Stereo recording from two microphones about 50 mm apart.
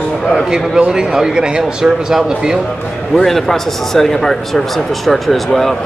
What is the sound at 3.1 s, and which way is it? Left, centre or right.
A man's voice, centre.